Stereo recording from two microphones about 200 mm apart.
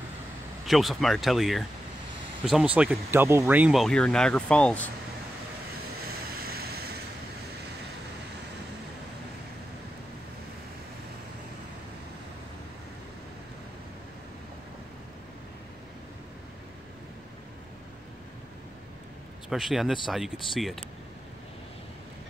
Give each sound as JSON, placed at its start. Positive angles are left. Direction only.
{"t": 0.7, "sound": "speech", "side_deg": 0}
{"t": 6.4, "sound": "a sound", "side_deg": -50}
{"t": 19.5, "sound": "speech", "side_deg": 0}